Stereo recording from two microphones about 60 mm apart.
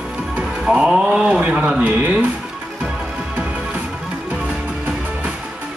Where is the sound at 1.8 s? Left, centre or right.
Right.